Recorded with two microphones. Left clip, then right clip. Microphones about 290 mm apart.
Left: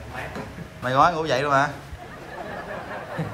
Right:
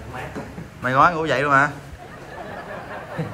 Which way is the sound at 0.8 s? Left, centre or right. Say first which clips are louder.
Right 2 dB; centre.